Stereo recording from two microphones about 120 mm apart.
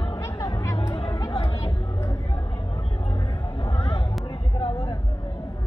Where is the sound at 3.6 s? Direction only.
50° left (ahead or behind).